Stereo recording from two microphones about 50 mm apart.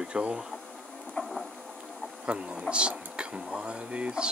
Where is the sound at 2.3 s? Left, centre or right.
Right.